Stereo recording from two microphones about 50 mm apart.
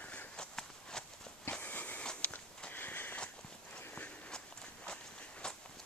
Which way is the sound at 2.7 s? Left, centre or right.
Left.